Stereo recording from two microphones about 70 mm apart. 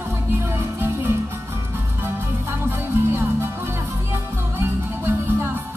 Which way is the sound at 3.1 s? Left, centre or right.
Right.